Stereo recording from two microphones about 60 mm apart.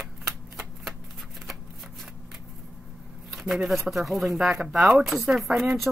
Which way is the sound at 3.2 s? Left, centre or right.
Centre.